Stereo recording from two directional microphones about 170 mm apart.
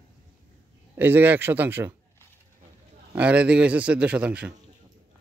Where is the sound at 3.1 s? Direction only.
5° right (ahead or behind).